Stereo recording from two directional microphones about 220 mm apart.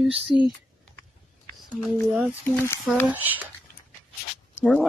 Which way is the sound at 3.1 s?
10° right (ahead or behind).